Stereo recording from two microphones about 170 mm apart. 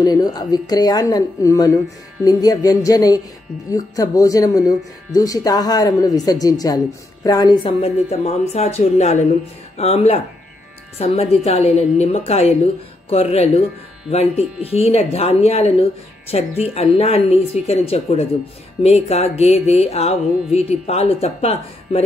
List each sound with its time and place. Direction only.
0.0 s speech: 20° left (ahead or behind)